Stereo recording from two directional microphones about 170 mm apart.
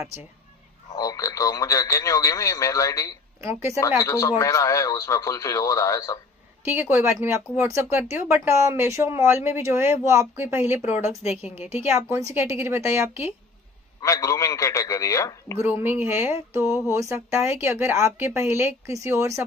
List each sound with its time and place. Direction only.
0.9 s speech: 20° left (ahead or behind)
3.4 s speech: 15° right (ahead or behind)
4.0 s speech: 20° left (ahead or behind)
6.6 s speech: 10° right (ahead or behind)
14.0 s speech: 20° left (ahead or behind)
15.6 s speech: 10° right (ahead or behind)